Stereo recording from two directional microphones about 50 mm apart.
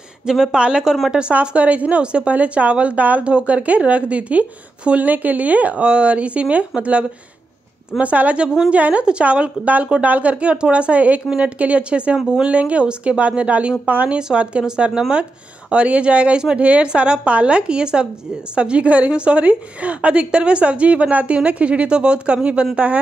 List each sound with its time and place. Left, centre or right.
0.3 s a woman's voice: centre